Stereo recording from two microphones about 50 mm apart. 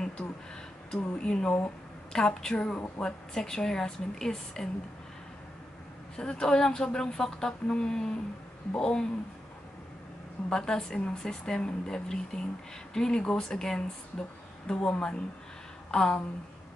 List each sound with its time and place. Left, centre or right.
0.9 s a woman's voice: left
6.1 s a woman's voice: centre
10.5 s a woman's voice: centre